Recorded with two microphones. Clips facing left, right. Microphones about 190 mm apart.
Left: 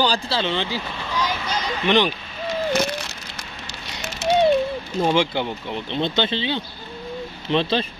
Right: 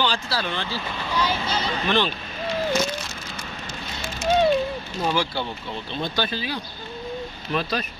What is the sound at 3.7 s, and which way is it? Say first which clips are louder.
Fire: left 1 dB; 75° left (ahead or behind).